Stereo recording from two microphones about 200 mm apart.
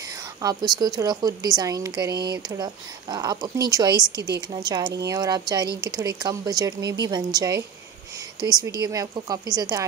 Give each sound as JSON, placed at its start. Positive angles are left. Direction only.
{"t": 0.4, "sound": "a woman's voice", "side_deg": -20}